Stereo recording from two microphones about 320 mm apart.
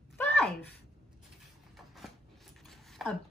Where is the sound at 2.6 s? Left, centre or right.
Centre.